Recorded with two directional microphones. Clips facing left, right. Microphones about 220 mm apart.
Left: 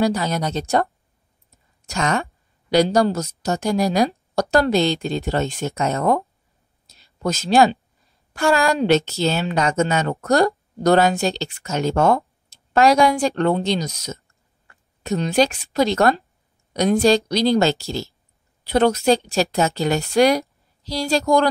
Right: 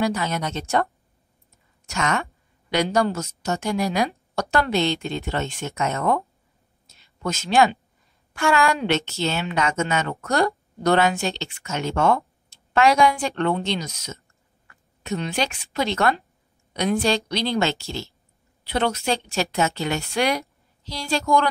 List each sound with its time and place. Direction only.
0.0 s a woman's voice: 35° left (ahead or behind)
1.9 s a woman's voice: 35° left (ahead or behind)
6.9 s a sound: 35° left (ahead or behind)
8.3 s a woman's voice: 35° left (ahead or behind)